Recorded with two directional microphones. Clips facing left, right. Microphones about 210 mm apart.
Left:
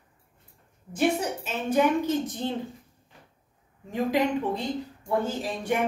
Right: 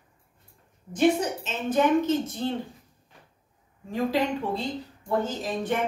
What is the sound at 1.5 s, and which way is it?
A woman's voice, 10° left (ahead or behind).